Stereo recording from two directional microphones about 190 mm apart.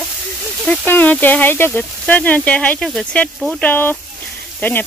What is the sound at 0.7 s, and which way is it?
Speech, 10° left (ahead or behind).